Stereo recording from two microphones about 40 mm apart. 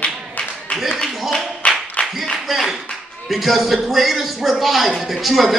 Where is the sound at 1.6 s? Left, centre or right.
Left.